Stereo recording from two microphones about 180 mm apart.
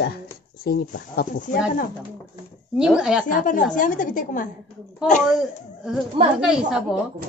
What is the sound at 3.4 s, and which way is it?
A woman's voice, 45° left (ahead or behind).